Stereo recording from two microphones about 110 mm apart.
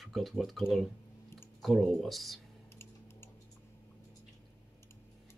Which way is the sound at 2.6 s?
25° left (ahead or behind).